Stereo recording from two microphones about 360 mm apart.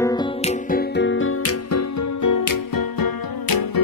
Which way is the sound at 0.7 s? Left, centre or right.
Left.